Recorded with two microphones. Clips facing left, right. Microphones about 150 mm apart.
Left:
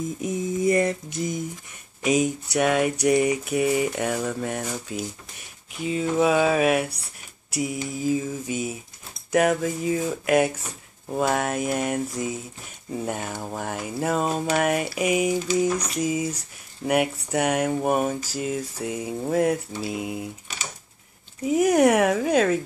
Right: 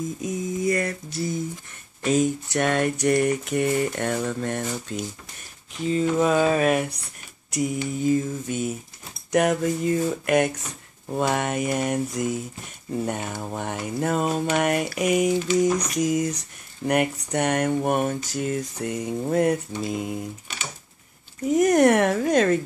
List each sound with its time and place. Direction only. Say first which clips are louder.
0.2 s mantra: left 3 dB; 25° left (ahead or behind)
2.0 s a sound: right 1 dB; 10° left (ahead or behind)
21.5 s speech: right 1 dB; 5° left (ahead or behind)